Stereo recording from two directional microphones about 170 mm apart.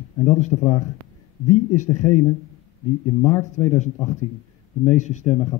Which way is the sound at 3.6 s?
45° left (ahead or behind).